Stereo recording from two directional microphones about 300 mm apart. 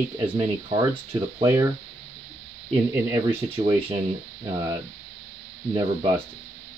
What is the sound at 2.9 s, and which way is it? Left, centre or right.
Speech, centre.